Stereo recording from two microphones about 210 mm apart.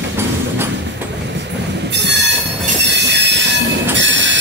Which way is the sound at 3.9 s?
60° right (ahead or behind).